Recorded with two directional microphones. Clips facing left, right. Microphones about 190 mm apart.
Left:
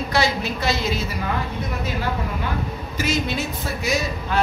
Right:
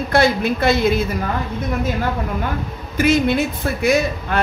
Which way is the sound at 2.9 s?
55° right (ahead or behind).